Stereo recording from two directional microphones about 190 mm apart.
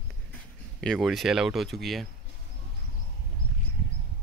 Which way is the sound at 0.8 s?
Centre (ahead or behind).